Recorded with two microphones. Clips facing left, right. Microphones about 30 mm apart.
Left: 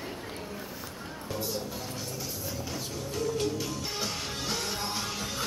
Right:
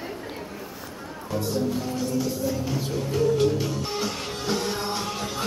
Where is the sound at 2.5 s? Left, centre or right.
Centre.